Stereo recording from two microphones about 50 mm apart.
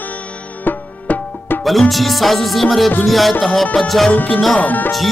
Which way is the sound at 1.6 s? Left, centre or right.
Centre.